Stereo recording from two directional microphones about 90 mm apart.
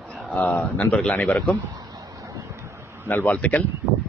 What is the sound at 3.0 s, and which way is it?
Speech, 20° left (ahead or behind).